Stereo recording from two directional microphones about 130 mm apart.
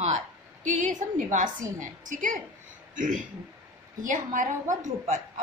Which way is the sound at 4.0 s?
80° right.